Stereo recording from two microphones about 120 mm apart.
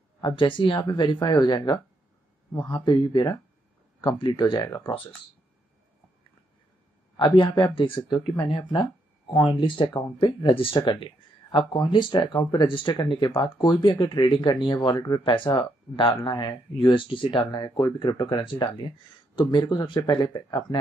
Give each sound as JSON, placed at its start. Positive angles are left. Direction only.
{"t": 0.4, "sound": "speech", "side_deg": 45}
{"t": 7.2, "sound": "speech", "side_deg": 40}